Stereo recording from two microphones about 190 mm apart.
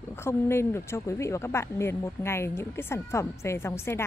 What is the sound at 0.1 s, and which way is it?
Speech, 15° left (ahead or behind).